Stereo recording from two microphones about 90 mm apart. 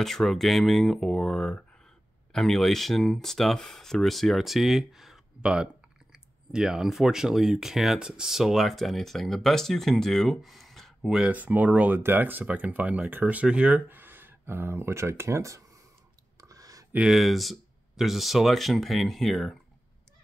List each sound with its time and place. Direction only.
0.0 s speech: 5° left (ahead or behind)
11.1 s speech: 15° right (ahead or behind); by 15.6 s 35° right (ahead or behind)
16.3 s clicking: 40° right (ahead or behind)
16.9 s speech: 5° right (ahead or behind)